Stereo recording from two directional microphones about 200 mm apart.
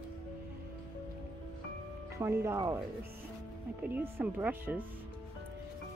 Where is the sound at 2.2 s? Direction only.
15° right (ahead or behind).